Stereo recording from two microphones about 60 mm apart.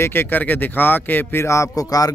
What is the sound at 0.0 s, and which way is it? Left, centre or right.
Speech, left.